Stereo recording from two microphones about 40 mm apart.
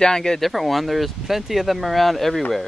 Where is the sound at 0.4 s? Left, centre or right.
Centre.